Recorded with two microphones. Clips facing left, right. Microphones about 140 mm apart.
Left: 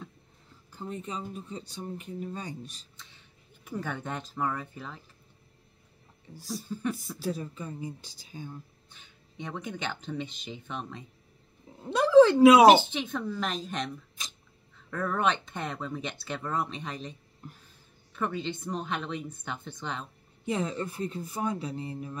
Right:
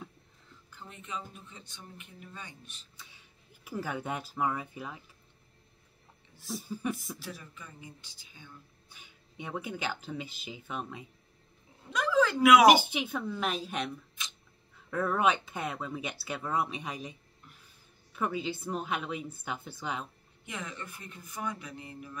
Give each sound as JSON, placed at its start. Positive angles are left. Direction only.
{"t": 0.7, "sound": "speech", "side_deg": 35}
{"t": 3.0, "sound": "speech", "side_deg": -10}
{"t": 6.3, "sound": "speech", "side_deg": 40}
{"t": 6.6, "sound": "speech", "side_deg": -10}
{"t": 7.2, "sound": "speech", "side_deg": 35}
{"t": 8.9, "sound": "speech", "side_deg": -10}
{"t": 11.8, "sound": "speech", "side_deg": 30}
{"t": 12.6, "sound": "speech", "side_deg": -10}
{"t": 14.2, "sound": "a sound", "side_deg": 35}
{"t": 14.9, "sound": "speech", "side_deg": -5}
{"t": 17.4, "sound": "music", "side_deg": 40}
{"t": 18.1, "sound": "speech", "side_deg": -5}
{"t": 20.4, "sound": "speech", "side_deg": 30}